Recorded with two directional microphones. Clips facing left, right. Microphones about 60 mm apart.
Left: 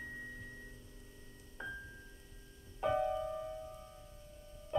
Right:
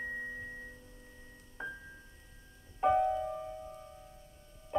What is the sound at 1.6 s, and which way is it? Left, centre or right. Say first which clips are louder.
Music: right 2 dB; right.